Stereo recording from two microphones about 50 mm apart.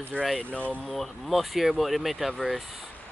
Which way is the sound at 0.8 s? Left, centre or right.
Centre.